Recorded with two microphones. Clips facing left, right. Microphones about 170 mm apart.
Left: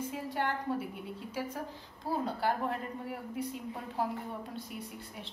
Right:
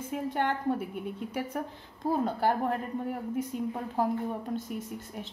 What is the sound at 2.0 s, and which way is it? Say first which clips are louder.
Speech: right 6 dB; 50° right (ahead or behind).